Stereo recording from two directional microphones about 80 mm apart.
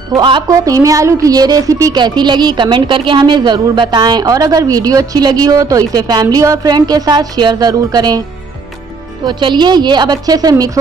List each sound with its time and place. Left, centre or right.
0.5 s a woman's voice: right
2.0 s speech: right
9.2 s speech: right